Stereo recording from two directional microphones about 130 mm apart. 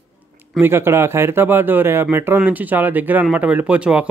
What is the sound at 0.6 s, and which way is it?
Speech, 20° right (ahead or behind).